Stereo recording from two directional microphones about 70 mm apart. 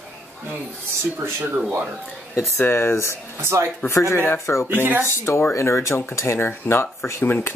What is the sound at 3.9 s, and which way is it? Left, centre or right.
Speech, left.